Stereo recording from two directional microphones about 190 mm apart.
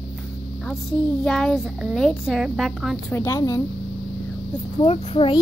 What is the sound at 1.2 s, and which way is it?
A child's voice, 5° left (ahead or behind).